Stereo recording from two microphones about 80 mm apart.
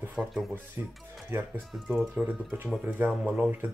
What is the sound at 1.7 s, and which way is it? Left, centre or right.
Speech, centre.